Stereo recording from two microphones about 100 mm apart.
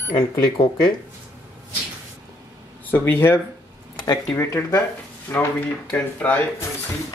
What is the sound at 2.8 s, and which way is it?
Speech, 20° left (ahead or behind).